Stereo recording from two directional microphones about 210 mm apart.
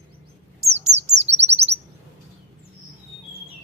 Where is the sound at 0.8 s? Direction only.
30° right (ahead or behind).